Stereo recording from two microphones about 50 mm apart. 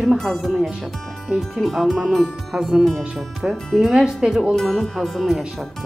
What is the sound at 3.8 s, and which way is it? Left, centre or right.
Speech, centre.